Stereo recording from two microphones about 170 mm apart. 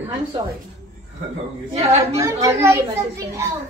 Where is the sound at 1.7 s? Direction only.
40° right (ahead or behind).